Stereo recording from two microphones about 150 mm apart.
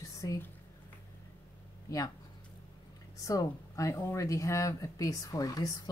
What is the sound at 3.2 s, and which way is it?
Speech, 20° left (ahead or behind).